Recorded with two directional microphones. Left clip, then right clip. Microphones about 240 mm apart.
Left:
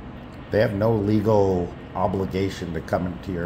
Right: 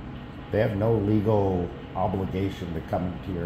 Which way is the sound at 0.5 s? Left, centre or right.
Centre.